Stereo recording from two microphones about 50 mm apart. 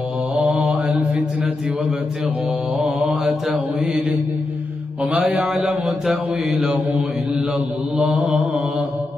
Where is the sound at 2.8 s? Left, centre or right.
Centre.